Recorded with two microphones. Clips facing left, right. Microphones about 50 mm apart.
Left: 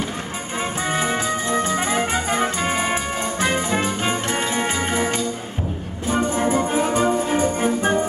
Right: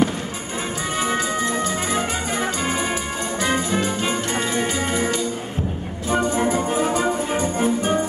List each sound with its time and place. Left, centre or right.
1.0 s music: left
2.3 s brass instrument: left
4.6 s music: left
7.1 s music: centre